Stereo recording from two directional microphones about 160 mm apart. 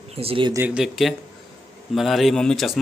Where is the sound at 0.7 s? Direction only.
5° right (ahead or behind).